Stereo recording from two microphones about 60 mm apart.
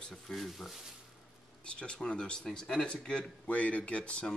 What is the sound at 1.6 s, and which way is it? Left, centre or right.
Speech, centre.